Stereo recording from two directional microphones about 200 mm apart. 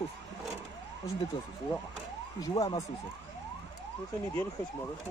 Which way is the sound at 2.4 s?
20° left (ahead or behind).